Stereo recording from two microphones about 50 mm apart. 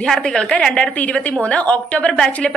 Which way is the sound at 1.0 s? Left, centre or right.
Left.